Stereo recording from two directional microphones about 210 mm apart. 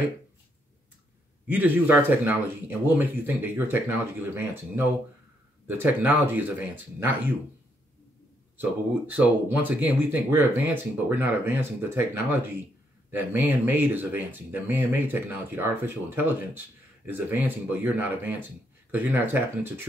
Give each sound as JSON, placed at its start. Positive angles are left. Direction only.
{"t": 1.5, "sound": "speech", "side_deg": -10}
{"t": 8.5, "sound": "speech", "side_deg": -10}